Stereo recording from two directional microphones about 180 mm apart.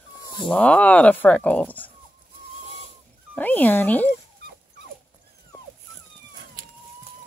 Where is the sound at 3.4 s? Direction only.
10° left (ahead or behind).